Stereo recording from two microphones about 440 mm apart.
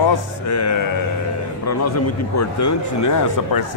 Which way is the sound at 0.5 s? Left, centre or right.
Left.